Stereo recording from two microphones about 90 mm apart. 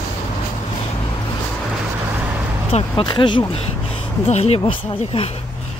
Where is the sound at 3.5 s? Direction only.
90° left.